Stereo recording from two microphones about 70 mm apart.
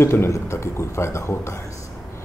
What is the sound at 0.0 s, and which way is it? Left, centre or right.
A man's voice, left.